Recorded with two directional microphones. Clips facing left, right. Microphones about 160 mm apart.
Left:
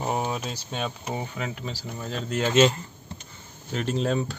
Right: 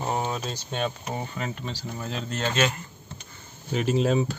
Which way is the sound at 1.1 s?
5° left (ahead or behind).